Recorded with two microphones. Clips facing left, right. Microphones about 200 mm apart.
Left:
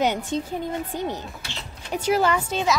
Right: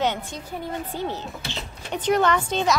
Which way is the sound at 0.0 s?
15° left (ahead or behind).